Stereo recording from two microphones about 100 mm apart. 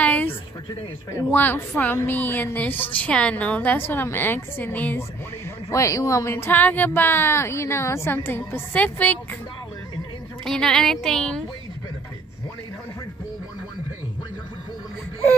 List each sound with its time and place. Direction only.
0.0 s a sound: 20° left (ahead or behind)
1.3 s a woman's voice: 20° left (ahead or behind)
5.7 s speech: 30° left (ahead or behind)
10.4 s speech: 5° left (ahead or behind)